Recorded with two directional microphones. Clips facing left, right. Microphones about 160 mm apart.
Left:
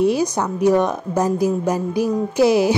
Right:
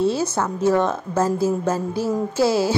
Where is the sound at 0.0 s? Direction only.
15° left (ahead or behind).